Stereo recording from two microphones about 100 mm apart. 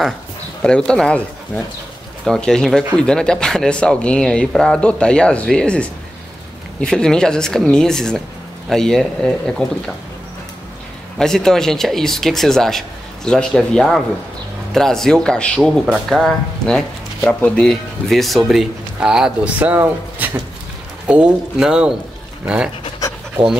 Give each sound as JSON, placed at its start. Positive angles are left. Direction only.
{"t": 0.6, "sound": "speech", "side_deg": 10}
{"t": 11.1, "sound": "speech", "side_deg": 5}
{"t": 15.8, "sound": "speech", "side_deg": -5}
{"t": 19.6, "sound": "speech", "side_deg": -20}